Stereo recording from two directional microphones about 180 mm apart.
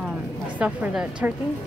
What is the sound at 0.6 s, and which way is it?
Speech, 5° right (ahead or behind).